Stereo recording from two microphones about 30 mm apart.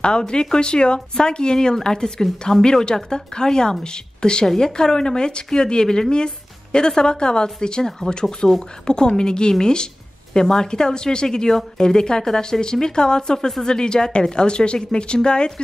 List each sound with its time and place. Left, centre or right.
0.0 s speech: left
4.5 s speech: centre